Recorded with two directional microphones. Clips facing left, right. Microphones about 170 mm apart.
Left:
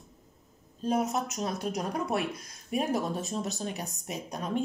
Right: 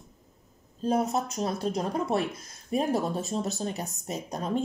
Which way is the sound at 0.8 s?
35° right (ahead or behind).